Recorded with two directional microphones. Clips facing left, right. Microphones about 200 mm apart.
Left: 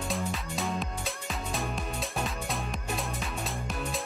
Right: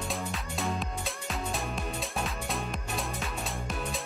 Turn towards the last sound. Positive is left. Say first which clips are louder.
# left 1 dB
turn(degrees=0)  # may be behind; listen again after turning